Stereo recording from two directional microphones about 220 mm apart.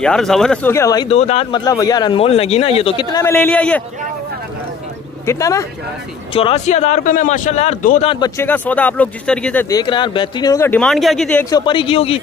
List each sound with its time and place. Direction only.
0.0 s speech: 5° left (ahead or behind)
1.1 s speech: 30° left (ahead or behind); by 3.8 s 5° left (ahead or behind)
5.2 s speech: 15° left (ahead or behind)
6.3 s a man's voice: 25° left (ahead or behind)
8.1 s speech: 15° left (ahead or behind)
11.5 s speech: 20° left (ahead or behind)